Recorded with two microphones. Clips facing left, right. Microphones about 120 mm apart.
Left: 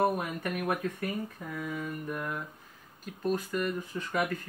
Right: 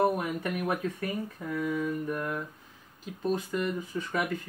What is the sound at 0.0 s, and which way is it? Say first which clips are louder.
Speech: right 2 dB; centre (ahead or behind).